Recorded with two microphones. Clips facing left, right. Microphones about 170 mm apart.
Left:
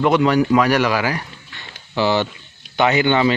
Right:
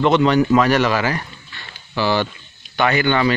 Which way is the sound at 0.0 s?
10° left (ahead or behind).